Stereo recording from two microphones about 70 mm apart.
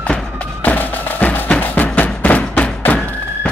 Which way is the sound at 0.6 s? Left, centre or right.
Left.